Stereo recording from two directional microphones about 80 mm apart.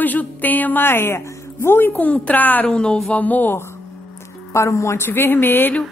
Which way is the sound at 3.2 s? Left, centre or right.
Left.